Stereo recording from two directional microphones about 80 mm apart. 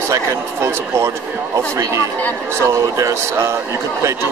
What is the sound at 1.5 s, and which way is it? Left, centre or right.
Speech, right.